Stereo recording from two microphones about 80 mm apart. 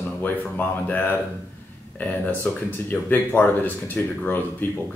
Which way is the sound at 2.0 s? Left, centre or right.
Left.